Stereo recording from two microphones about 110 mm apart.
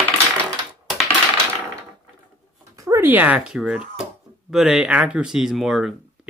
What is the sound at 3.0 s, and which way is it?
Speech, 15° right (ahead or behind).